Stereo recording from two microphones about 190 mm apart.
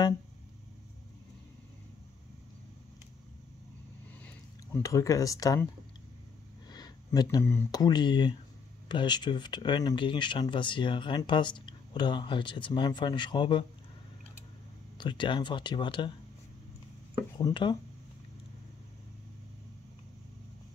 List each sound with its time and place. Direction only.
4.2 s speech: 10° left (ahead or behind)
6.7 s speech: 20° left (ahead or behind)
15.0 s speech: 25° left (ahead or behind)
17.4 s speech: 20° left (ahead or behind)